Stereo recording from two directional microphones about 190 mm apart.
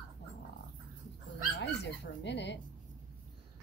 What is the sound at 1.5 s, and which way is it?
Dog, 70° left (ahead or behind).